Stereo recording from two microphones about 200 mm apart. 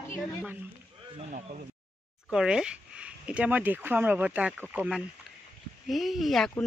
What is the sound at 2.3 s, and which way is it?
Speech, 5° right (ahead or behind).